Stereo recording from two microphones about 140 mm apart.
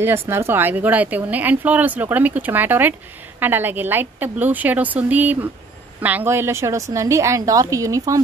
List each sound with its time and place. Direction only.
0.0 s a woman's voice: 15° right (ahead or behind)